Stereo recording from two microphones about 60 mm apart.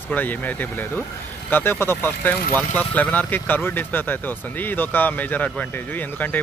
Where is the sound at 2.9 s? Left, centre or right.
Left.